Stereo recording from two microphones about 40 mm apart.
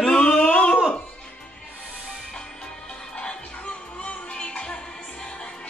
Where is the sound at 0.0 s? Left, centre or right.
Left.